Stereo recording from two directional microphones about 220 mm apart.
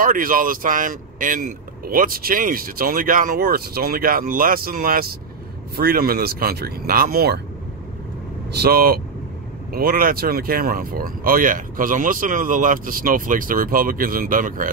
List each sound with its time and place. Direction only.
0.0 s speech: 40° right (ahead or behind)
8.5 s speech: 45° right (ahead or behind)